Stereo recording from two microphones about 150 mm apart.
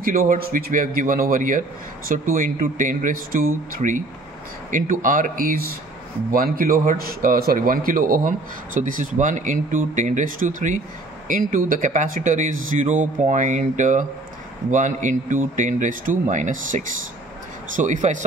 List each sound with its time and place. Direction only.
0.0 s a man's voice: 65° right (ahead or behind)